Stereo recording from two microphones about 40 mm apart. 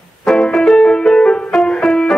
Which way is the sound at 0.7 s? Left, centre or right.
Centre.